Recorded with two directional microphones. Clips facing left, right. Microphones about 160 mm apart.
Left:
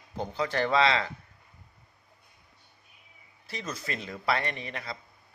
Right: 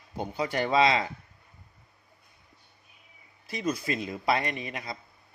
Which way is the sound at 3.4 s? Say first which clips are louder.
Right 7 dB; 15° right (ahead or behind).